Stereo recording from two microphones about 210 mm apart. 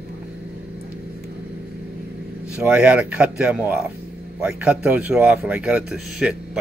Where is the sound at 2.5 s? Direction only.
5° right (ahead or behind).